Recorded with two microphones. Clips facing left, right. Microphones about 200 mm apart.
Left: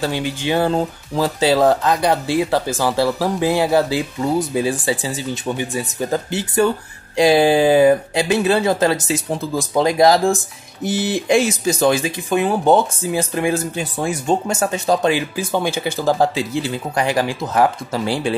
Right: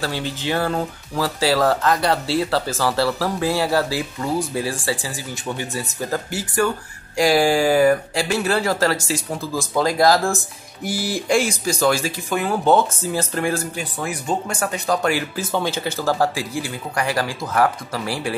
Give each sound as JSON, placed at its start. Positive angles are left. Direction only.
{"t": 0.0, "sound": "speech", "side_deg": 15}